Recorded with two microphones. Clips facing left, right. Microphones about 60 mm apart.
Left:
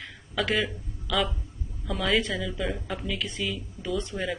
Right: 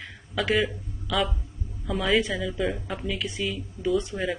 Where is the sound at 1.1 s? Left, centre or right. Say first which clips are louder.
Right 1 dB; centre.